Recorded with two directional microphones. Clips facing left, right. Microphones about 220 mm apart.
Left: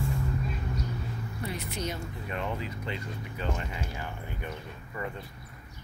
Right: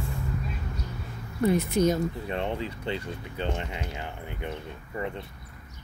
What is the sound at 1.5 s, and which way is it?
Speech, 45° right (ahead or behind).